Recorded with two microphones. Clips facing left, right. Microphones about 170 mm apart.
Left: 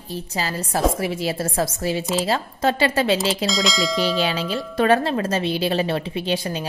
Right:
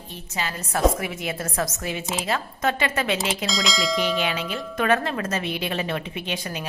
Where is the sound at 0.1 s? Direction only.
35° left (ahead or behind).